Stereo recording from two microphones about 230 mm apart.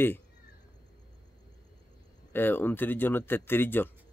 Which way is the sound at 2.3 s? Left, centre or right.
Centre.